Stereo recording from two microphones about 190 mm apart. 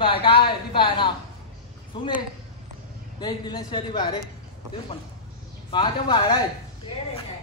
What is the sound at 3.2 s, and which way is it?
Speech, 25° left (ahead or behind).